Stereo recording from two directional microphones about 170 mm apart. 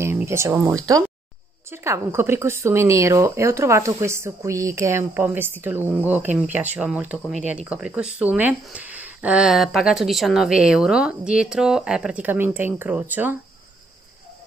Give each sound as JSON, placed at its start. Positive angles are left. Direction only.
{"t": 0.0, "sound": "speech", "side_deg": -15}